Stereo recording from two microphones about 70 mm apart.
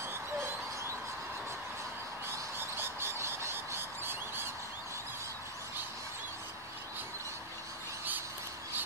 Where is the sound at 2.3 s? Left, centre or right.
Right.